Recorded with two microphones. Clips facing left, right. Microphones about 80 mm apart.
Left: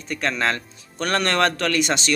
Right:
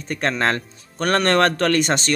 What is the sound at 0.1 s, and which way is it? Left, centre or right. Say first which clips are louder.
Speech: right 2 dB; right.